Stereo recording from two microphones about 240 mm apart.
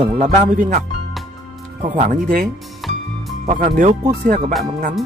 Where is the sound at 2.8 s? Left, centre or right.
Centre.